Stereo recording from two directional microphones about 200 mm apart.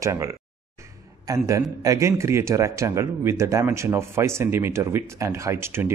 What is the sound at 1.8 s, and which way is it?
Speech, 15° right (ahead or behind).